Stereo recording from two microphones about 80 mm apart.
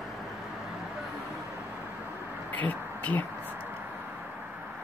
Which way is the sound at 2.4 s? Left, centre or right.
Left.